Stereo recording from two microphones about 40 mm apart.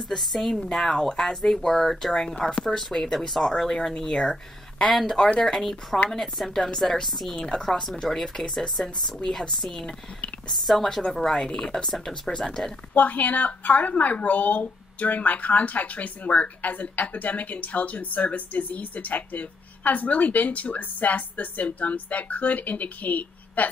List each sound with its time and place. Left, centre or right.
0.1 s speech: centre
7.4 s speech: centre
10.5 s a woman's voice: centre
12.9 s a woman's voice: left